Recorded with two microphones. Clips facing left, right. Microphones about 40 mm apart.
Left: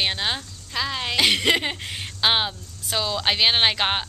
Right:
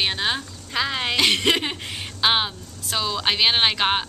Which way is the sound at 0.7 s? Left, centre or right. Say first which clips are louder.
Right 2 dB; centre.